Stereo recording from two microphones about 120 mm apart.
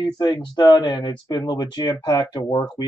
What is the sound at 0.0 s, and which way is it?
Speech, 35° left (ahead or behind).